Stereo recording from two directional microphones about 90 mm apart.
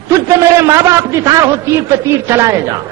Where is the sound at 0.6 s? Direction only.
35° right (ahead or behind).